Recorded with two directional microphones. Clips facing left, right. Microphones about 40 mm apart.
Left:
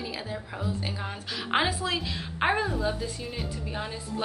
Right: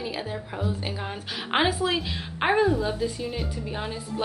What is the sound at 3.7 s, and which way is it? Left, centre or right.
Speech, centre.